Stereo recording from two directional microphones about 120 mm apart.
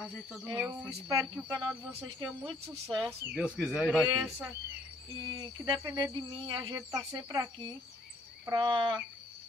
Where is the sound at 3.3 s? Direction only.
5° right (ahead or behind).